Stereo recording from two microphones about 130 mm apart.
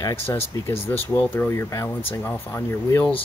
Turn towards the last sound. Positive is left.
turn(degrees=20)  # may be behind; listen again after turning